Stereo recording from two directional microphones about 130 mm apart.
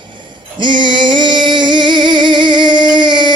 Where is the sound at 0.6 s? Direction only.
40° right (ahead or behind).